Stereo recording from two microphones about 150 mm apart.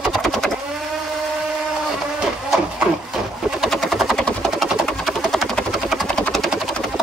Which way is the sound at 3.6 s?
Centre (ahead or behind).